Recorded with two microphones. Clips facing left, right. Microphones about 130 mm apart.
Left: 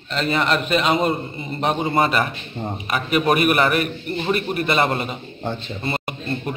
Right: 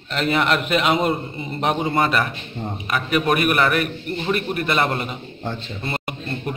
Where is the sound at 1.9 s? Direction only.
5° left (ahead or behind).